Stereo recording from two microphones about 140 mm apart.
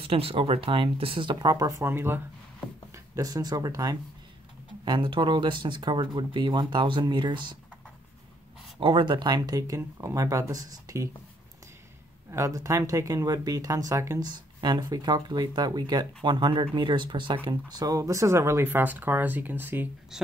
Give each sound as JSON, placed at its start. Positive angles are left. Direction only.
{"t": 0.0, "sound": "speech", "side_deg": -45}
{"t": 8.7, "sound": "speech", "side_deg": -35}
{"t": 12.3, "sound": "speech", "side_deg": -20}